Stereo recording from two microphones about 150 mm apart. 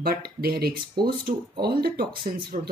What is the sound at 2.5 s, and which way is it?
Speech, 55° right (ahead or behind).